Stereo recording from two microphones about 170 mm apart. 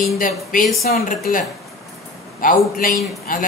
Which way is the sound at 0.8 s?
65° left (ahead or behind).